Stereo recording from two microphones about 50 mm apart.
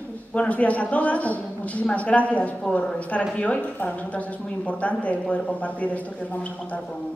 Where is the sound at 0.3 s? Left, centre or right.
Left.